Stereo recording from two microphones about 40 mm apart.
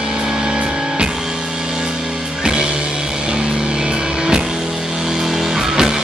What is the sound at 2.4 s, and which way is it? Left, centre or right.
Music, right.